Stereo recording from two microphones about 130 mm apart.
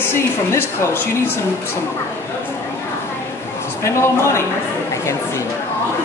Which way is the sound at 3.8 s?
20° left (ahead or behind).